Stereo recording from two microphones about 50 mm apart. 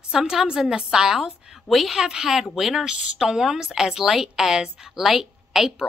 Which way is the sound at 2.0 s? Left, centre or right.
Centre.